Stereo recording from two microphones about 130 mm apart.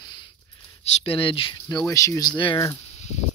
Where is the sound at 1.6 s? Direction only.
30° left (ahead or behind).